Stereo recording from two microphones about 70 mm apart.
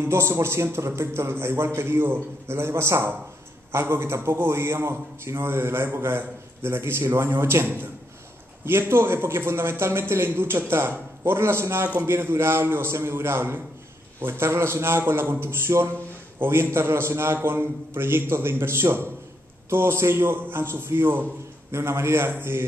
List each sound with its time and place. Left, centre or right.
0.0 s a man's voice: right